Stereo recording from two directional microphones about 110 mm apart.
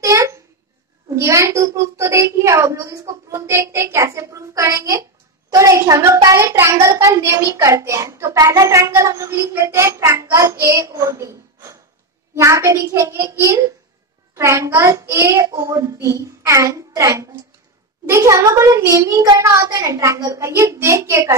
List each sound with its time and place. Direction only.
0.0 s babbling: 25° right (ahead or behind)
1.0 s a child's voice: 30° right (ahead or behind)